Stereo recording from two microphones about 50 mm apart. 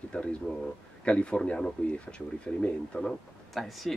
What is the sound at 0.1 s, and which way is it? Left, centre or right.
Speech, centre.